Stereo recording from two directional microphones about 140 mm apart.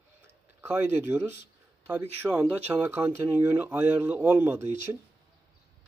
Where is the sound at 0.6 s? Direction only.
15° right (ahead or behind).